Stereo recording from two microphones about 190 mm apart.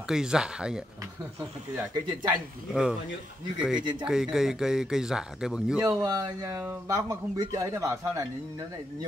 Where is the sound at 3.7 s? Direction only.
25° right (ahead or behind).